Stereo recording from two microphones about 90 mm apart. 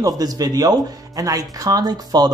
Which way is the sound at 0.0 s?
45° right (ahead or behind).